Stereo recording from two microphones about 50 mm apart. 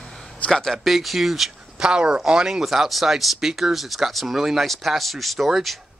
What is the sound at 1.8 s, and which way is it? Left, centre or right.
Speech, centre.